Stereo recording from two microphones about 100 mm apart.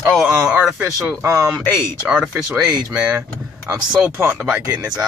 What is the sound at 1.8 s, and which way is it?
Speech, 10° right (ahead or behind).